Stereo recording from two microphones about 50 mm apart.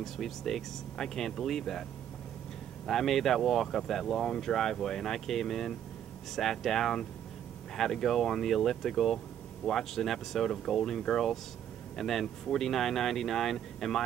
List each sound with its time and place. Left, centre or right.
0.0 s speech: centre
2.9 s speech: centre